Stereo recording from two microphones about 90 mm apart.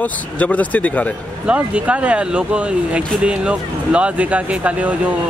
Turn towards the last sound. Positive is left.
turn(degrees=-15)  # may be behind; listen again after turning